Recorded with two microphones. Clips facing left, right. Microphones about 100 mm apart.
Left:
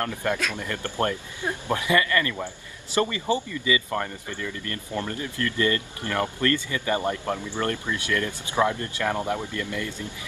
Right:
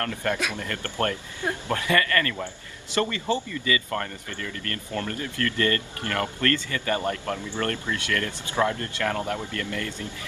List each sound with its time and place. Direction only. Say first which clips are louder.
0.0 s speech: left 1 dB; 15° left (ahead or behind)